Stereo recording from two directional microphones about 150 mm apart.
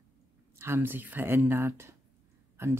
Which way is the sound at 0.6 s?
15° right (ahead or behind).